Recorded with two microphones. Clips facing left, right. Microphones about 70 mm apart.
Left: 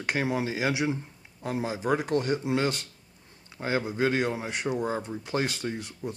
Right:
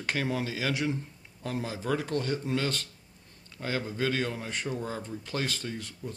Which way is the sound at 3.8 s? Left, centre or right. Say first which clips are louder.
Left 3 dB; centre.